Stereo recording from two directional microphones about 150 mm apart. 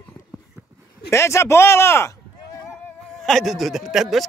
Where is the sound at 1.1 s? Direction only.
20° left (ahead or behind).